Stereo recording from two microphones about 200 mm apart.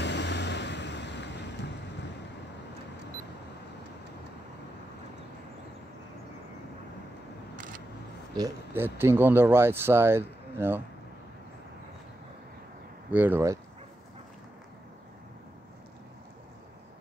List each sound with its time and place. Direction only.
0.0 s waves: 60° left (ahead or behind)
8.4 s speech: 10° right (ahead or behind)
13.1 s speech: 10° right (ahead or behind)